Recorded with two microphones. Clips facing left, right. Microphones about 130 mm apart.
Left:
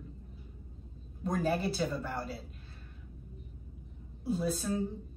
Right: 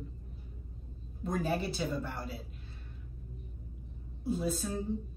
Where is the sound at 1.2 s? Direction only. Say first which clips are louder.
Left 2 dB; centre (ahead or behind).